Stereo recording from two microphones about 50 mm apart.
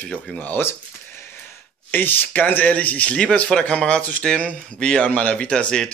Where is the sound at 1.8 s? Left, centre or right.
Left; by 5.0 s centre.